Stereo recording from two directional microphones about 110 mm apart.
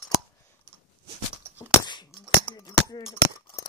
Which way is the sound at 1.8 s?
40° left (ahead or behind).